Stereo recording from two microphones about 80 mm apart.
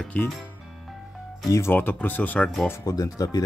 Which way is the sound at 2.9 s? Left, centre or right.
Left.